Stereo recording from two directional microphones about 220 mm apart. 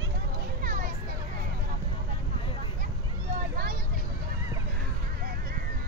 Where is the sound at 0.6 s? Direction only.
40° right (ahead or behind).